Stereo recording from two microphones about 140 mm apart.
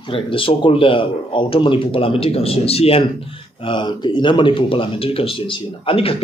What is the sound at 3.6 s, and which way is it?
Speech, 35° left (ahead or behind).